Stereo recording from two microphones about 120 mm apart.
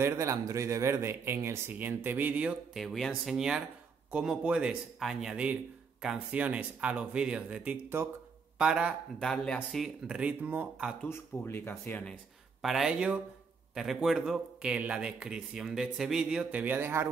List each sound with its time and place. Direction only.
0.0 s speech: 25° right (ahead or behind)
2.7 s speech: centre (ahead or behind)
9.2 s speech: 5° left (ahead or behind); by 10.9 s 15° right (ahead or behind)
11.1 s speech: 20° left (ahead or behind)
12.6 s speech: centre (ahead or behind); by 17.1 s 20° right (ahead or behind)